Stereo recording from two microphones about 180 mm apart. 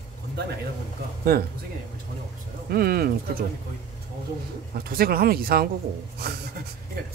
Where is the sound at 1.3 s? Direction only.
60° right (ahead or behind).